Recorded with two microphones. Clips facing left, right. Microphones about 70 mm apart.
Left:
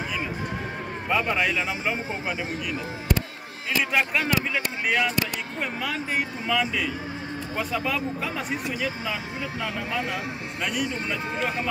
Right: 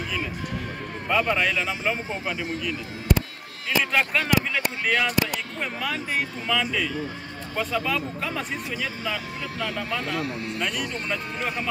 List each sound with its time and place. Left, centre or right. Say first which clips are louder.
1.0 s speech: right 1 dB; centre
3.9 s speech: right 1 dB; centre
6.4 s speech: even; centre
9.6 s speech: right 1 dB; centre